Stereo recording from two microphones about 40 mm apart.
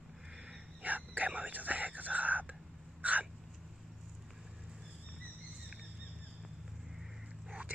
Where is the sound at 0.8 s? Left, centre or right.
Right.